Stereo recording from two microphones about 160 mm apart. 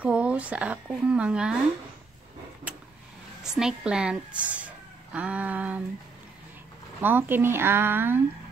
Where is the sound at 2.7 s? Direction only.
10° right (ahead or behind).